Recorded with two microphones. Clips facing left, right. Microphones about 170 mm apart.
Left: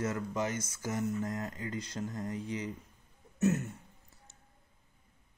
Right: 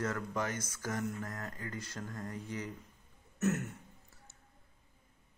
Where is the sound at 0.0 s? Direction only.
10° left (ahead or behind).